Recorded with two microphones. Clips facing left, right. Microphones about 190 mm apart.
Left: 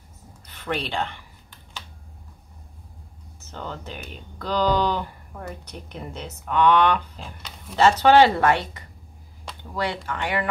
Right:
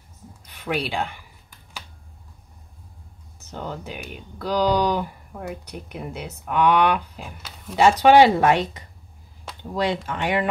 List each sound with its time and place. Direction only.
0.5 s speech: 10° right (ahead or behind)
3.3 s speech: 15° right (ahead or behind)
10.0 s speech: 20° right (ahead or behind)